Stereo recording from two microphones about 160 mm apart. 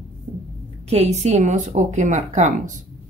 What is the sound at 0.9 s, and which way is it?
Speech, 45° right (ahead or behind).